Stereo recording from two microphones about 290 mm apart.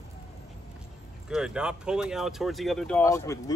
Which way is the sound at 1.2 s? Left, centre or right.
Centre.